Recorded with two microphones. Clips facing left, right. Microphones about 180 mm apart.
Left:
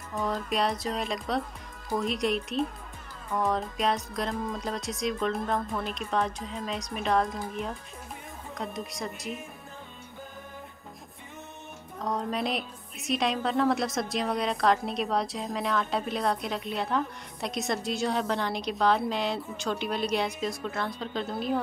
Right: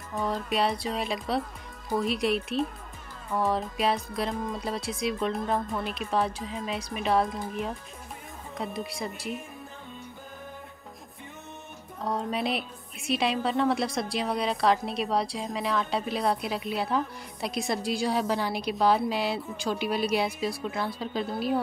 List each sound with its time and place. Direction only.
0.1 s a woman's voice: centre (ahead or behind)
12.0 s a woman's voice: 5° right (ahead or behind)